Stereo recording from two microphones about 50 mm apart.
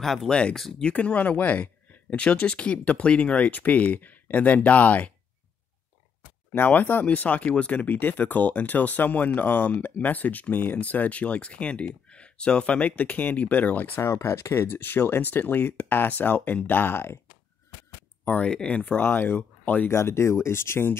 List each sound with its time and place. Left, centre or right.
0.0 s speech: centre
0.3 s speech: left
0.6 s speech: centre
0.8 s speech: left
6.5 s speech: left
13.9 s speech: left
18.4 s speech: centre
18.9 s speech: left
19.9 s speech: left